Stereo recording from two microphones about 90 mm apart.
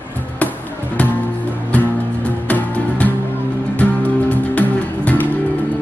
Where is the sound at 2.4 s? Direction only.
20° left (ahead or behind).